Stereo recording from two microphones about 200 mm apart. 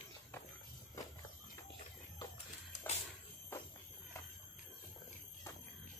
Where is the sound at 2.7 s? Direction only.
35° left (ahead or behind).